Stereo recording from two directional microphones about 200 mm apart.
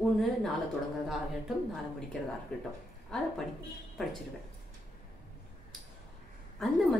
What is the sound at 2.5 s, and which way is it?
Speech, 5° left (ahead or behind).